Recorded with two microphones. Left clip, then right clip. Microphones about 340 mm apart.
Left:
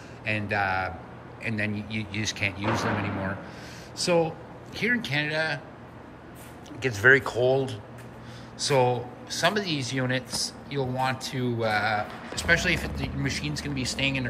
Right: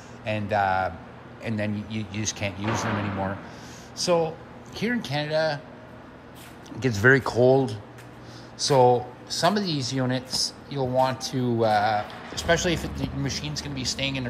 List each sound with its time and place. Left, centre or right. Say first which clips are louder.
0.2 s speech: right 3 dB; centre
3.9 s speech: right 1 dB; centre
6.8 s speech: even; centre